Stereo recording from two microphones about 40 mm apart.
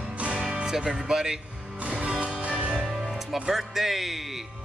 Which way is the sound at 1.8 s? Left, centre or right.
Right.